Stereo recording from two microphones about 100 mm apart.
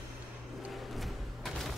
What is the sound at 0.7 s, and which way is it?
Music, centre (ahead or behind).